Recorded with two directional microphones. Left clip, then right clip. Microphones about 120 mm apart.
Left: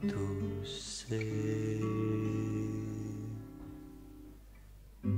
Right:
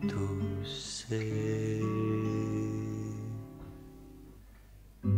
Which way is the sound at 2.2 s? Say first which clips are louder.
Right 3 dB; 35° left (ahead or behind).